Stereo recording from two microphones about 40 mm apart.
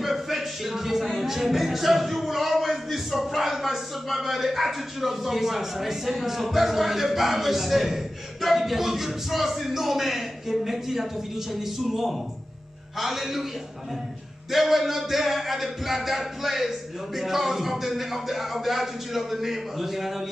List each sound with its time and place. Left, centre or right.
0.0 s speech: centre
14.5 s speech: centre